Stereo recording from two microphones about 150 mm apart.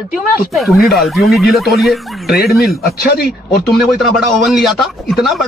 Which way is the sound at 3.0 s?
90° left.